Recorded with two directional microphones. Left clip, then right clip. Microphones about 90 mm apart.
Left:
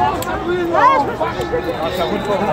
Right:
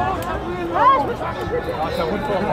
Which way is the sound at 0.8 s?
10° left (ahead or behind).